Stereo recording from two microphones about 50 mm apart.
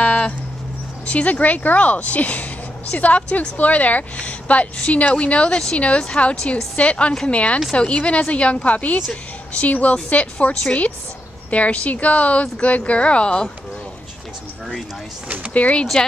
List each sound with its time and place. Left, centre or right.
0.0 s a sound: left
1.0 s a woman's voice: left
15.5 s speech: left